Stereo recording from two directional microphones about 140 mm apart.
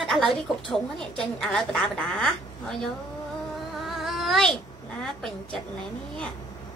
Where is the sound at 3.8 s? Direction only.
Centre (ahead or behind).